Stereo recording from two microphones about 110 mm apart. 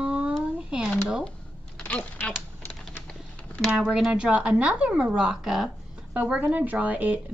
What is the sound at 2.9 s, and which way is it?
Typing, 10° left (ahead or behind).